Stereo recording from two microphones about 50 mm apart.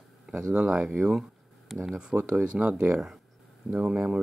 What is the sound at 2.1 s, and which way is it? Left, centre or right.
Speech, right.